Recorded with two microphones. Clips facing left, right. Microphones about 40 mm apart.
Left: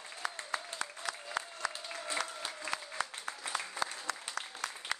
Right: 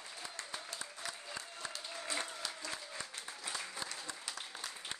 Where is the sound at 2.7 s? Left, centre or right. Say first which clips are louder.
Left 7 dB; left.